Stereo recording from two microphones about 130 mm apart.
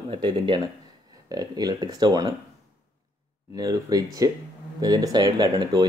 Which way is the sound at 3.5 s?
30° right (ahead or behind).